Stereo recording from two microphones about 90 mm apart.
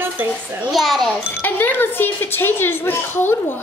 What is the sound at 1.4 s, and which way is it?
A woman's voice, 20° left (ahead or behind).